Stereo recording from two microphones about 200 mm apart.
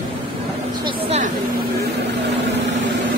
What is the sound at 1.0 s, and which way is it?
Vehicle, 35° right (ahead or behind).